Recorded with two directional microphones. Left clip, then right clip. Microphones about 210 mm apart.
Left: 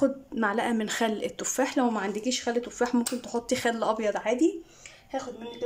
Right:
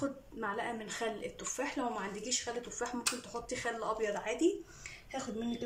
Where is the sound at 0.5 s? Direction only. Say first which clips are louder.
Left 10 dB; 50° left (ahead or behind).